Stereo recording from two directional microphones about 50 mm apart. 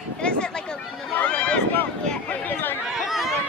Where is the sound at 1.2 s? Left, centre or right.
Left.